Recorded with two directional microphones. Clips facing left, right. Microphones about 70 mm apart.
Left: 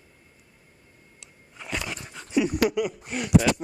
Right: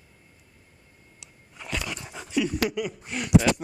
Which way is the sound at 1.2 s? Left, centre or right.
Centre.